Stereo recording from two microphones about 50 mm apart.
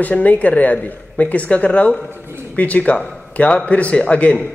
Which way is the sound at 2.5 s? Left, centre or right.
Left.